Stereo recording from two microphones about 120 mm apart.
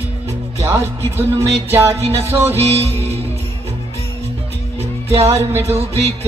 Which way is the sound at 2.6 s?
60° right (ahead or behind).